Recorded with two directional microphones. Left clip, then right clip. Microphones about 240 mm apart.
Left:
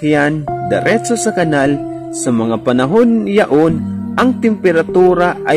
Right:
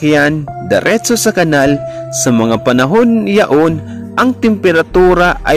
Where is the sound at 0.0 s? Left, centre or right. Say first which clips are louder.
Right 3 dB; centre.